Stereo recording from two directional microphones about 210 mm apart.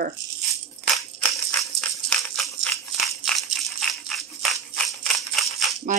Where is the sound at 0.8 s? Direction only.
5° left (ahead or behind).